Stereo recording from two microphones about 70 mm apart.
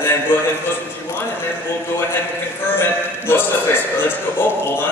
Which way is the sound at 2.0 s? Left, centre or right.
Left.